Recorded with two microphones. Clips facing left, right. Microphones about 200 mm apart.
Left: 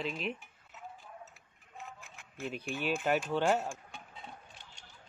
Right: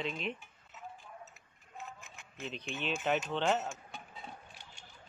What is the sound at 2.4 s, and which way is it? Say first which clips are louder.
Speech: left 3 dB; 10° left (ahead or behind).